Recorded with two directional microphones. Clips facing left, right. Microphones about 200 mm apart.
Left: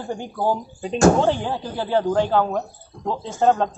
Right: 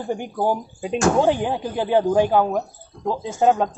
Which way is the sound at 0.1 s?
15° right (ahead or behind).